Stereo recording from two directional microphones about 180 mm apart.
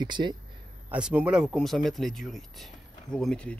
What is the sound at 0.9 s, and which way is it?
Speech, 5° right (ahead or behind).